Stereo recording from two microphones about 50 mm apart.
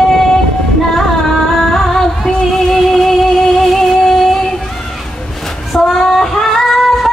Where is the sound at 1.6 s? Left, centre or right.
Centre.